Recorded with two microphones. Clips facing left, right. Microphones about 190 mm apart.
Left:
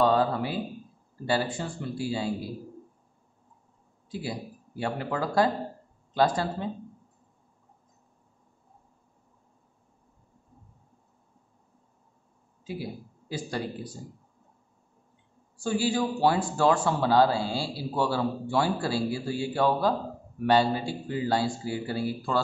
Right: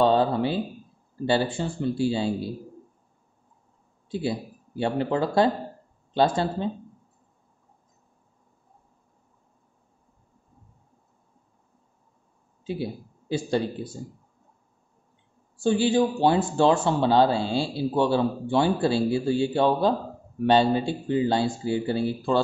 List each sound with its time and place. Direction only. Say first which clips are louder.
0.0 s a sound: right 3 dB; 25° right (ahead or behind)
1.2 s a man's voice: right 4 dB; 25° right (ahead or behind)
4.1 s a man's voice: right 6 dB; 25° right (ahead or behind)
12.6 s speech: right 5 dB; 25° right (ahead or behind)
15.5 s a man's voice: right 6 dB; 25° right (ahead or behind)